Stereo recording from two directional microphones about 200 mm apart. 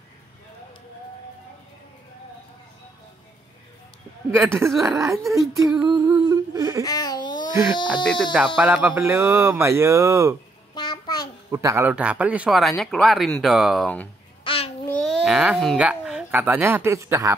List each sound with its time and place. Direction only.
4.4 s speech: 10° right (ahead or behind)
6.8 s baby laughter: 15° left (ahead or behind)
8.0 s speech: centre (ahead or behind); by 10.3 s 15° right (ahead or behind)
10.7 s a sound: 20° left (ahead or behind)
11.5 s speech: 15° right (ahead or behind); by 14.0 s centre (ahead or behind)
14.4 s babbling: 25° left (ahead or behind)
14.9 s speech: 5° left (ahead or behind); by 17.3 s 15° right (ahead or behind)